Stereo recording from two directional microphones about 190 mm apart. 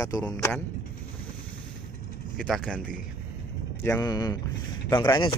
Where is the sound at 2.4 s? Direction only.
5° left (ahead or behind).